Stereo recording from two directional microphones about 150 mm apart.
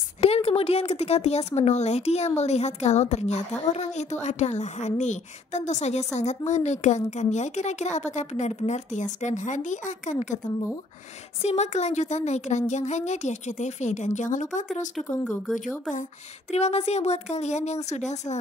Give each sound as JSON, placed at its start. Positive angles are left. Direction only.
{"t": 0.2, "sound": "speech", "side_deg": 40}
{"t": 11.4, "sound": "speech", "side_deg": 50}
{"t": 15.0, "sound": "speech", "side_deg": 0}
{"t": 15.9, "sound": "speech", "side_deg": 50}